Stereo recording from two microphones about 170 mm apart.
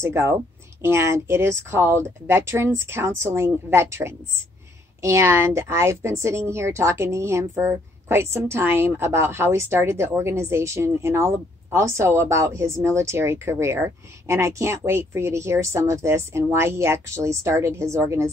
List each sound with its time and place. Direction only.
0.0 s speech: 15° right (ahead or behind)